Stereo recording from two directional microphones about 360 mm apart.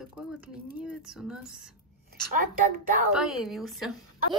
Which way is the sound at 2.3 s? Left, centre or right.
Right.